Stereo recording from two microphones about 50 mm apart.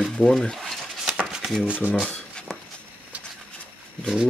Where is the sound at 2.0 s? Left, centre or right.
Centre.